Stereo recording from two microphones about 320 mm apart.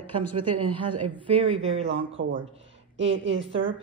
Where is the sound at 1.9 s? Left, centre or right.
Right.